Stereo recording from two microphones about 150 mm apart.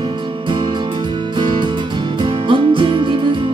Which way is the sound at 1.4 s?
30° right (ahead or behind).